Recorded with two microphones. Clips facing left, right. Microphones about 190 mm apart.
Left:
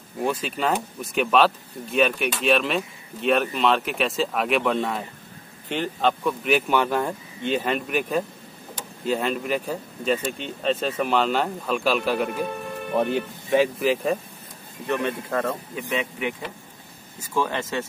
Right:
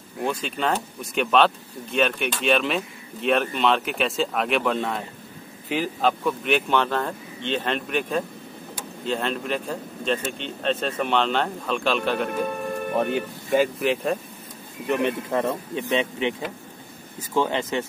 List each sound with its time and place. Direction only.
0.2 s speech: 5° left (ahead or behind)
14.9 s speech: 15° right (ahead or behind)
15.4 s speech: 30° right (ahead or behind)